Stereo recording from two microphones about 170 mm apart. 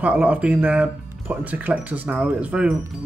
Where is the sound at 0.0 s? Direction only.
5° right (ahead or behind).